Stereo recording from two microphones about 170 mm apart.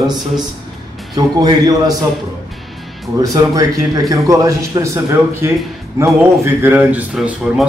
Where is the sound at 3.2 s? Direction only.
20° right (ahead or behind).